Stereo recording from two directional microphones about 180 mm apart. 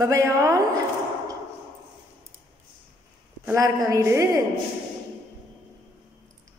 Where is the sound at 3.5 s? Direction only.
15° right (ahead or behind).